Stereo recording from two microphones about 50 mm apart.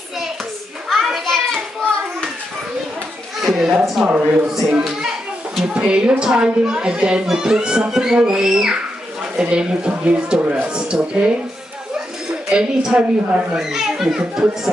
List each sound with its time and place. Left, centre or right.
1.2 s children playing: centre
3.7 s a child's voice: centre
4.1 s speech: right
4.5 s a child's voice: centre; by 11.3 s right
12.4 s a woman's voice: centre
13.6 s a woman's voice: centre